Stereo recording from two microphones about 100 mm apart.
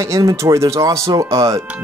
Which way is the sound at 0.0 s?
35° right (ahead or behind).